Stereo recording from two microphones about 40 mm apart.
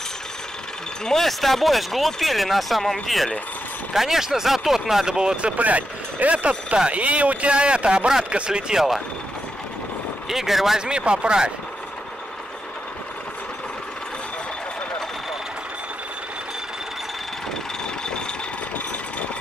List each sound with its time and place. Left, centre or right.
1.0 s speech: centre
3.9 s speech: centre
5.0 s speech: centre
5.6 s speech: right
8.7 s speech: centre
10.2 s speech: centre
10.9 s speech: right
18.0 s a sound: centre